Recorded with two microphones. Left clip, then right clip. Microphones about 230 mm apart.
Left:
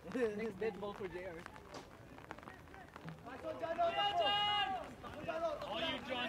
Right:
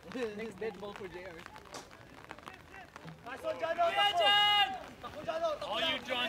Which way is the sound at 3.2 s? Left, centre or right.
Centre.